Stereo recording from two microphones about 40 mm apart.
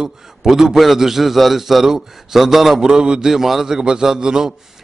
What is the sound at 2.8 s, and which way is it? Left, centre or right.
Speech, centre.